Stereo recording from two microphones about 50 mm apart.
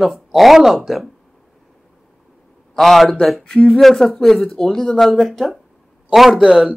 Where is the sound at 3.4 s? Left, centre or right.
Centre.